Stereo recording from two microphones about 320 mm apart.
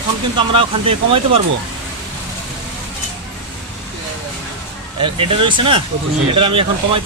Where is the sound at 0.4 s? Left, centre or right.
Centre.